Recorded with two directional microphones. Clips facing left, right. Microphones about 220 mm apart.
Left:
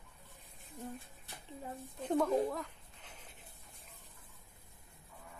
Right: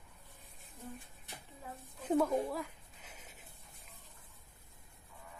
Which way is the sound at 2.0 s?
5° right (ahead or behind).